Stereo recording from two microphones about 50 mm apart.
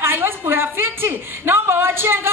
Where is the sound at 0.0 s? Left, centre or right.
Right.